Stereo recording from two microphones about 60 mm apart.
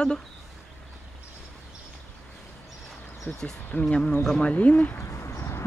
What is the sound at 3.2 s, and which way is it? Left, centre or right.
Speech, centre.